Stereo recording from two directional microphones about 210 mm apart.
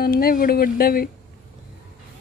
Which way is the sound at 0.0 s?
45° left (ahead or behind).